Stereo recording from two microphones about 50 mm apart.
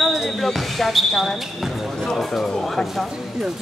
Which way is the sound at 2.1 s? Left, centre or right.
Centre.